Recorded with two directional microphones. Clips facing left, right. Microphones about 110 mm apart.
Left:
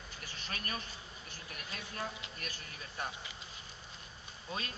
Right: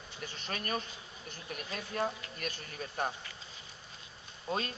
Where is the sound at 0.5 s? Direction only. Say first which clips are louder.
Right 6 dB; 35° right (ahead or behind).